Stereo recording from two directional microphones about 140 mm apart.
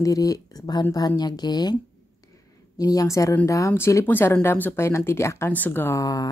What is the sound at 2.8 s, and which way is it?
Speech, 25° left (ahead or behind).